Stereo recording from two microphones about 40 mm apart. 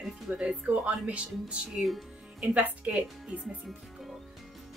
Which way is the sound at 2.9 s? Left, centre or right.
Right.